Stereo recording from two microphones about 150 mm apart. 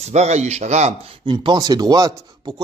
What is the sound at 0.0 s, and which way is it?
Speech, 50° right (ahead or behind).